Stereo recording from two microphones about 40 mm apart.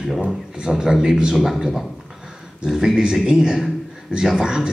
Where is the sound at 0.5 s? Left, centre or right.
Centre.